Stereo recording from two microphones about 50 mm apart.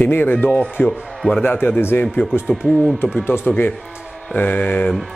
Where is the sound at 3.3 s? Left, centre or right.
Left.